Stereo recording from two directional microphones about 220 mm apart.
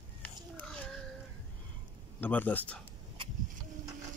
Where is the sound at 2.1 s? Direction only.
10° left (ahead or behind).